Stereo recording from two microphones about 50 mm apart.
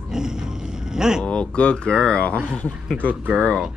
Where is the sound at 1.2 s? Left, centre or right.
Left.